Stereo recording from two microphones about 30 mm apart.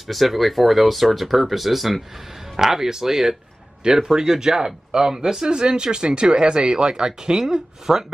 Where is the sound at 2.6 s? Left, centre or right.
Centre.